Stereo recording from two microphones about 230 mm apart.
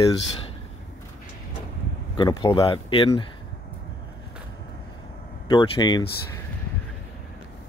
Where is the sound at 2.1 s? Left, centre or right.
Centre.